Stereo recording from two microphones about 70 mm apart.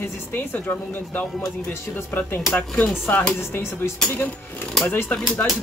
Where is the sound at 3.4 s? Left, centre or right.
Left.